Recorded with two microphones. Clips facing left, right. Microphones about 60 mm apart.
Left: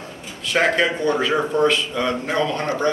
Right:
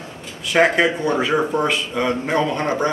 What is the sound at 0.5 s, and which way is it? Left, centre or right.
Speech, centre.